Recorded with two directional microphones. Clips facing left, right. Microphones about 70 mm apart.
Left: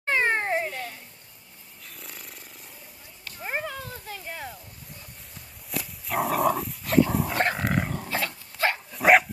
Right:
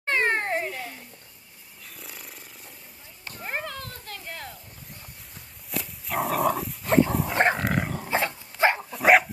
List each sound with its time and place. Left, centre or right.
0.0 s cat: centre
1.9 s snoring: centre
3.3 s a sound: centre
5.7 s dog: centre
8.1 s dog: right
8.9 s dog: centre